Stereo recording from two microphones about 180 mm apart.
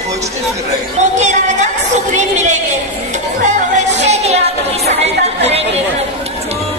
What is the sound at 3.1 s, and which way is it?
Music, 40° right (ahead or behind).